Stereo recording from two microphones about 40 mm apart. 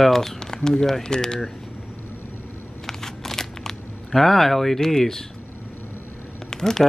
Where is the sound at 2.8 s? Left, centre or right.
Centre.